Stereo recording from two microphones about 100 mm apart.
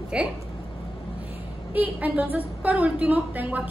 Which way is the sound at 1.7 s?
15° right (ahead or behind).